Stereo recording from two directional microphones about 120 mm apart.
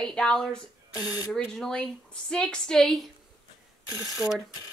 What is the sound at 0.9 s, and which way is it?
Speech, 30° left (ahead or behind).